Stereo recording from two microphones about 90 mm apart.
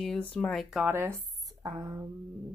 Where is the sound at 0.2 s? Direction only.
15° left (ahead or behind).